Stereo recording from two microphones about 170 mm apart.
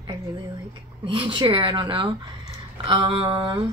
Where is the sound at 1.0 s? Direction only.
30° right (ahead or behind).